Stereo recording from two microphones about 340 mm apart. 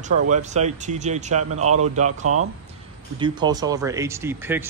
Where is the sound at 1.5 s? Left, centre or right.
Right.